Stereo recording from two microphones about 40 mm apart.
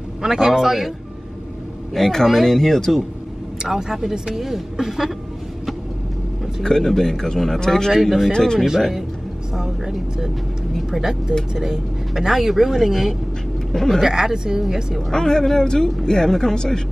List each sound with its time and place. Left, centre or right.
0.2 s speech: centre
2.0 s speech: centre
3.6 s speech: centre
6.6 s speech: centre
7.9 s speech: centre
9.6 s speech: centre
13.7 s speech: centre
14.0 s speech: centre
15.0 s speech: centre